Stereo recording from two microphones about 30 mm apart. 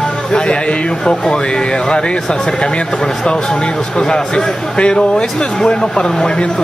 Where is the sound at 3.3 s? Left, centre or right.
Left.